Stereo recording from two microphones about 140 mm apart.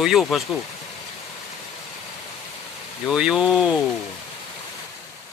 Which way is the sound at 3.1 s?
5° right (ahead or behind).